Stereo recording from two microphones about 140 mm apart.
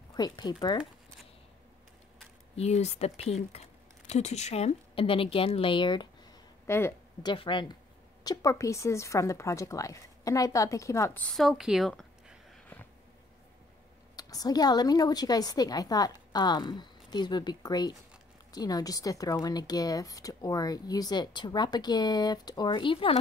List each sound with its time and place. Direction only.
0.1 s a woman's voice: 30° left (ahead or behind)
2.5 s a woman's voice: 50° left (ahead or behind); by 6.0 s 35° left (ahead or behind)
6.7 s a woman's voice: 20° left (ahead or behind)
7.2 s a woman's voice: 35° left (ahead or behind); by 12.8 s 5° left (ahead or behind)
14.1 s a woman's voice: 25° left (ahead or behind)